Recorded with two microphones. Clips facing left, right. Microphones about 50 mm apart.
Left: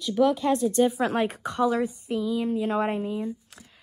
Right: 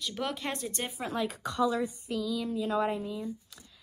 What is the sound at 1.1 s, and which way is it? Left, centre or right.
Speech, left.